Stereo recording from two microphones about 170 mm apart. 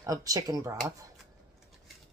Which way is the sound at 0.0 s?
20° right (ahead or behind).